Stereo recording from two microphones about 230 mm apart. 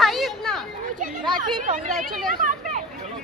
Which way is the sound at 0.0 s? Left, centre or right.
Centre.